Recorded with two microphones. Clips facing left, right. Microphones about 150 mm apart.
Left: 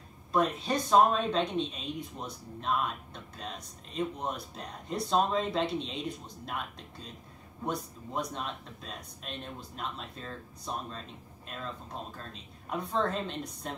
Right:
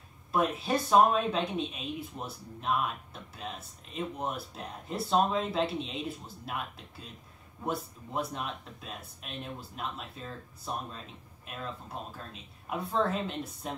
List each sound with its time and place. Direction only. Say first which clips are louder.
0.3 s speech: even; 5° right (ahead or behind)